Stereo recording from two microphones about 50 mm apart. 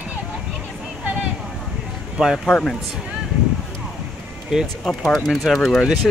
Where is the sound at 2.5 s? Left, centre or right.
Centre.